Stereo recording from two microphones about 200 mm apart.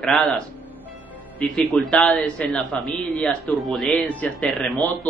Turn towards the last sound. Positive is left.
turn(degrees=5)  # may be behind; listen again after turning